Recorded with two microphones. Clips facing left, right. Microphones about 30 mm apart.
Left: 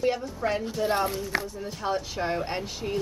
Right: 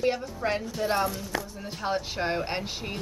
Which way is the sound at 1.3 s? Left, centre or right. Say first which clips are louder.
Left 4 dB; left.